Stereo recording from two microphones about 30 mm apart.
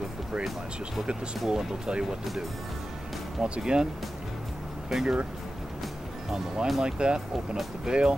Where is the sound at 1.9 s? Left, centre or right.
Right.